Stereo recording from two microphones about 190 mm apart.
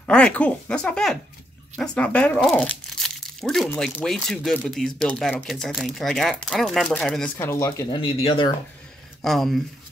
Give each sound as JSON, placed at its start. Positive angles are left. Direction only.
{"t": 0.0, "sound": "speech", "side_deg": 5}
{"t": 7.4, "sound": "speech", "side_deg": 15}
{"t": 8.0, "sound": "speech", "side_deg": 30}
{"t": 9.2, "sound": "speech", "side_deg": 0}